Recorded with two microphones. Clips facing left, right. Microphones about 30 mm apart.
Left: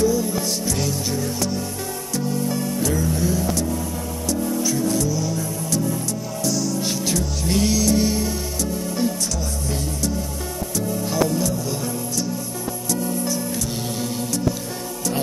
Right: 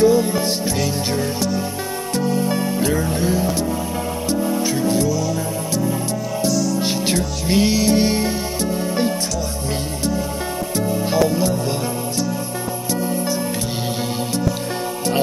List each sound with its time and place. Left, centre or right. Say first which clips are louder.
0.0 s music: right 5 dB; right
2.1 s music: right 4 dB; right
3.4 s music: right 3 dB; right
6.5 s music: right 3 dB; centre
6.8 s music: right 3 dB; right
10.8 s music: right 4 dB; right
12.9 s music: right 2 dB; right